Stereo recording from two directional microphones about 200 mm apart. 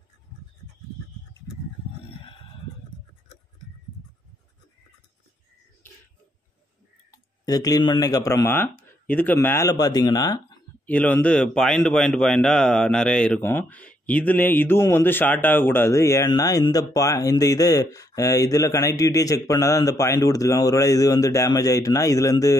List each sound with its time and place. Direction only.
7.1 s a man's voice: 20° left (ahead or behind)
10.9 s a man's voice: 5° left (ahead or behind)